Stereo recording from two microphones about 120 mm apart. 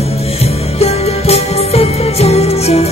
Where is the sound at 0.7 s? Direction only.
60° left (ahead or behind).